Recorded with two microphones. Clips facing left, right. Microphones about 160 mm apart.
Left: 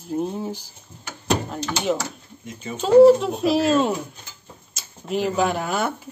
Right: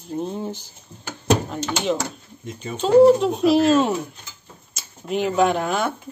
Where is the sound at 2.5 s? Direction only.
5° left (ahead or behind).